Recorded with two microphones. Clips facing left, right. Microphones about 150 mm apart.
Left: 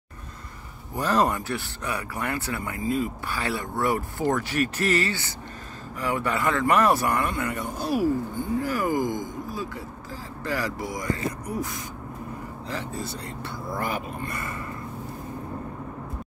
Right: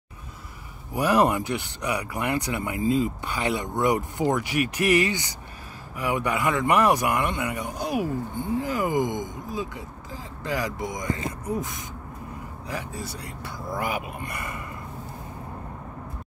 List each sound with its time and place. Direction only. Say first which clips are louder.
0.9 s speech: right 2 dB; 10° right (ahead or behind)